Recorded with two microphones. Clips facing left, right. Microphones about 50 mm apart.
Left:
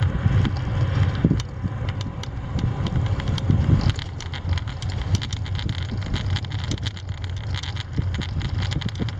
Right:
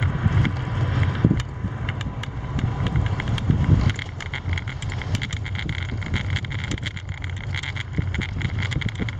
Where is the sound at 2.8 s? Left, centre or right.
Right.